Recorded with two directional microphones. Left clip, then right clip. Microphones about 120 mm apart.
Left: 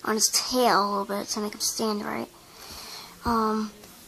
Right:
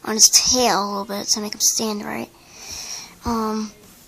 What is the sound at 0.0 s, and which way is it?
A woman's voice, 10° right (ahead or behind).